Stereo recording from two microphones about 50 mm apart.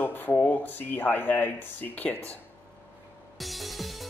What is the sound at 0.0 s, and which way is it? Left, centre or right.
Speech, left.